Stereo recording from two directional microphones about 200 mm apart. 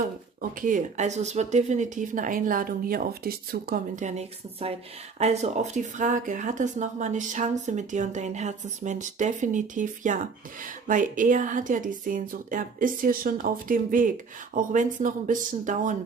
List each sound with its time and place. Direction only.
0.4 s speech: 40° right (ahead or behind)